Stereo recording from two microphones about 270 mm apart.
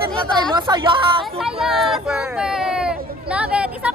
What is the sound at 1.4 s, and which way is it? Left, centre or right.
A woman's voice, centre.